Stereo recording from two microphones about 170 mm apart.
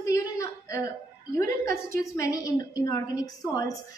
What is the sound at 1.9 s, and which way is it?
A woman's voice, 20° left (ahead or behind).